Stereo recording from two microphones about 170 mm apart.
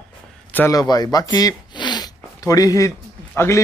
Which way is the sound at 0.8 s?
25° left (ahead or behind).